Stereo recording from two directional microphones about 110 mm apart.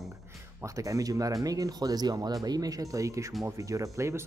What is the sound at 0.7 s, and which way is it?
Speech, 30° right (ahead or behind).